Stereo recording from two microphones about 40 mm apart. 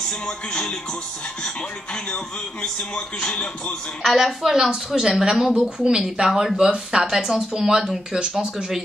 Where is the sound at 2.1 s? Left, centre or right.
Left.